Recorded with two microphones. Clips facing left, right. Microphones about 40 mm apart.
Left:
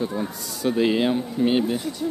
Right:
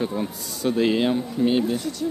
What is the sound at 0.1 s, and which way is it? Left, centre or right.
Speech, centre.